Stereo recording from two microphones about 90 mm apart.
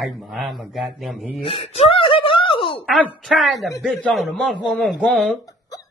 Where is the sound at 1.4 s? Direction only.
90° left.